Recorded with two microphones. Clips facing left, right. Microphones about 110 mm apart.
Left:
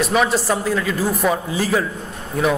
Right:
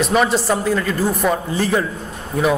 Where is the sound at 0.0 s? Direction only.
Centre (ahead or behind).